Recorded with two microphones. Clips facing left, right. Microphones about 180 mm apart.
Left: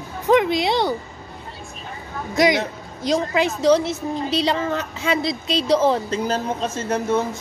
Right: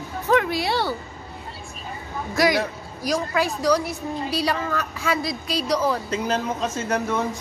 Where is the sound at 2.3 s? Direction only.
20° left (ahead or behind).